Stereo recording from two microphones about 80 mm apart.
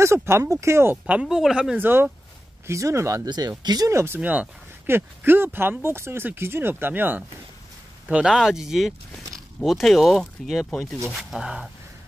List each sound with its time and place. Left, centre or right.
0.0 s speech: right
1.2 s speech: centre
1.8 s speech: right
2.6 s speech: right
3.3 s speech: right
3.9 s speech: right
4.2 s speech: centre
4.8 s speech: right
8.1 s speech: centre
10.7 s speech: centre
11.1 s speech: centre